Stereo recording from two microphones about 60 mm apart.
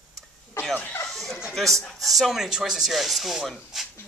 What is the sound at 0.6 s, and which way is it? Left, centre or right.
Speech, left.